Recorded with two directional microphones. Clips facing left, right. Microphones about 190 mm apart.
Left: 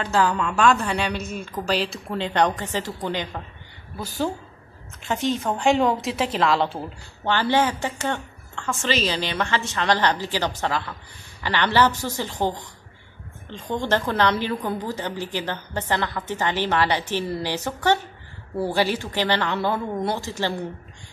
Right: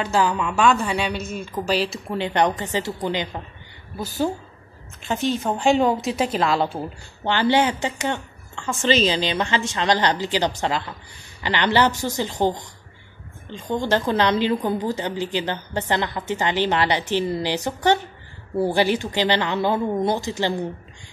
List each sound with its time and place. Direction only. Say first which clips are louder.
0.0 s a woman's voice: right 1 dB; 10° right (ahead or behind)
5.5 s a woman's voice: right 2 dB; 10° right (ahead or behind)